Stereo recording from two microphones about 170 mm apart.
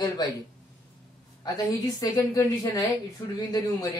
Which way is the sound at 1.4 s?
20° left (ahead or behind).